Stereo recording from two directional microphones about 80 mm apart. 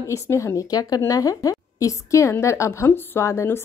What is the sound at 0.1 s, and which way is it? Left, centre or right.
A woman's voice, left.